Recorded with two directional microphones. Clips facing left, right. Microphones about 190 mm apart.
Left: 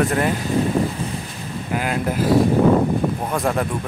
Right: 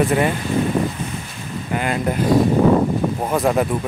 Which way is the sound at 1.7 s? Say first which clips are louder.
Right 1 dB; 5° left (ahead or behind).